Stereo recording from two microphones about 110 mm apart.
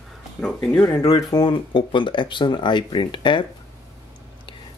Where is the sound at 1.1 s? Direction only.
35° left (ahead or behind).